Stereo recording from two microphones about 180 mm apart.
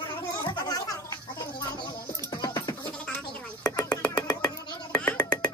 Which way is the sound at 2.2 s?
20° left (ahead or behind).